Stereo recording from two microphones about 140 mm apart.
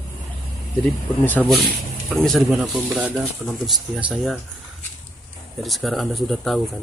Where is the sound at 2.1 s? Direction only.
Centre (ahead or behind).